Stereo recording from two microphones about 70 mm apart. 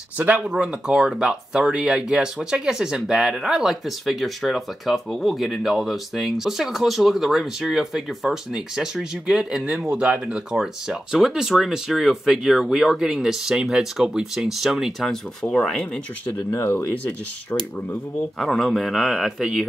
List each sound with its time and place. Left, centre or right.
0.2 s speech: centre
15.4 s speech: centre
18.4 s speech: centre